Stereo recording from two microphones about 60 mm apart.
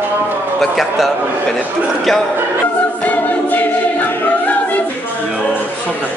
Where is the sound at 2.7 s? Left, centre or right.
Left.